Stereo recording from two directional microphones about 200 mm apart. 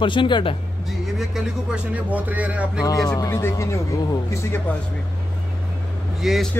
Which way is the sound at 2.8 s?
15° left (ahead or behind).